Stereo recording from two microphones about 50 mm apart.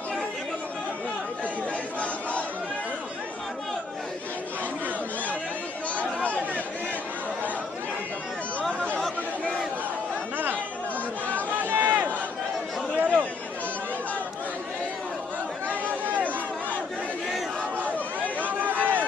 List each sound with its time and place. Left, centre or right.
5.9 s chatter: left
10.3 s chatter: right
11.5 s run: right
13.0 s chatter: right
15.8 s chatter: right
18.4 s a sound: right